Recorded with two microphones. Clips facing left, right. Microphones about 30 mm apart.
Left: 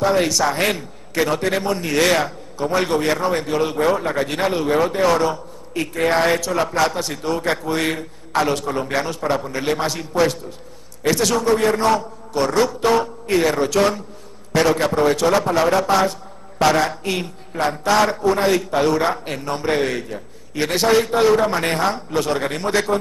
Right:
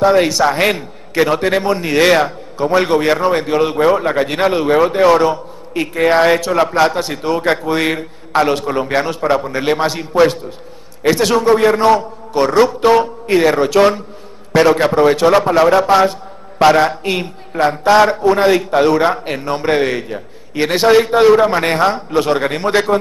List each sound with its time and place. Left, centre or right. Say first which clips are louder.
0.0 s a man's voice: right 6 dB; right